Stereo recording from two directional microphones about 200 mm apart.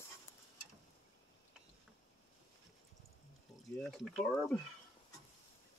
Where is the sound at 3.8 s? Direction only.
Centre (ahead or behind).